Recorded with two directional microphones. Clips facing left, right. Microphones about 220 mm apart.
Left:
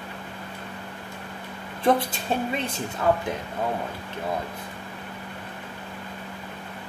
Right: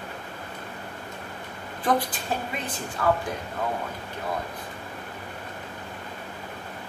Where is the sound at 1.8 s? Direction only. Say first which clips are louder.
Left 3 dB; 25° left (ahead or behind).